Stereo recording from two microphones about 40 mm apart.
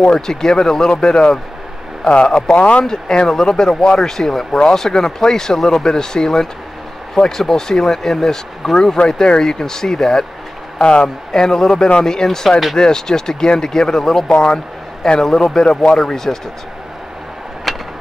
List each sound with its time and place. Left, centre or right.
0.1 s a man's voice: centre
2.5 s speech: left
2.8 s speech: centre
10.8 s a man's voice: left
11.4 s speech: centre
17.7 s vehicle: centre